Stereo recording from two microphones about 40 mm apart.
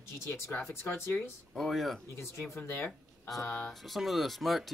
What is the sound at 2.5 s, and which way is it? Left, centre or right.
Speech, left.